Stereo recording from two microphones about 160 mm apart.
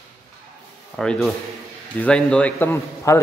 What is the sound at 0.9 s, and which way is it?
A man's voice, 5° left (ahead or behind).